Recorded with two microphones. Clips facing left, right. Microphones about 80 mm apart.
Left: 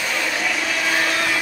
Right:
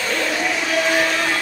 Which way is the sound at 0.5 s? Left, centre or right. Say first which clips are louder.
Right 3 dB; centre.